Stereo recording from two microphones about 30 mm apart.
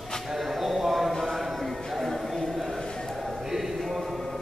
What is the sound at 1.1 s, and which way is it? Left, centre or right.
Music, centre.